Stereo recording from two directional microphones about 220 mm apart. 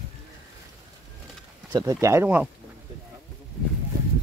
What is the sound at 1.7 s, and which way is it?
Speech, 15° right (ahead or behind).